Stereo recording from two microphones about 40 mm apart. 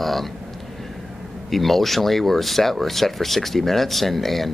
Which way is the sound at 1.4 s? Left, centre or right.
Centre.